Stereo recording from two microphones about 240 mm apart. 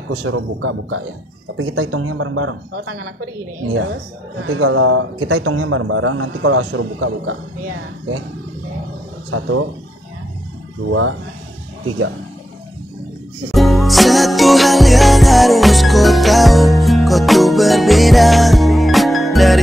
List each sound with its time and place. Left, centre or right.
0.1 s speech: right
9.3 s speech: right
10.9 s speech: right
13.5 s music: centre